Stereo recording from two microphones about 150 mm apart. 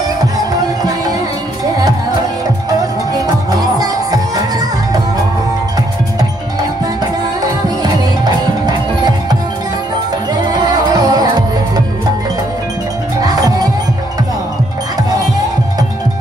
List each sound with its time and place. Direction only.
0.6 s music: 25° right (ahead or behind)
3.7 s music: 25° right (ahead or behind)
7.4 s music: 25° right (ahead or behind)
13.2 s music: 25° right (ahead or behind)